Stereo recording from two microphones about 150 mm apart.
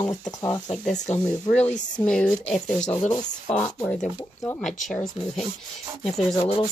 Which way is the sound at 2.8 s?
55° left (ahead or behind).